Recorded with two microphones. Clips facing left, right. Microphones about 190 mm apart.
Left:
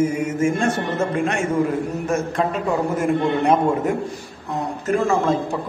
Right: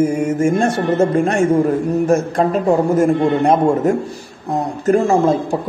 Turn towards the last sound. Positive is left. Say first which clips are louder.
# right 5 dB
turn(degrees=-40)  # may be behind; listen again after turning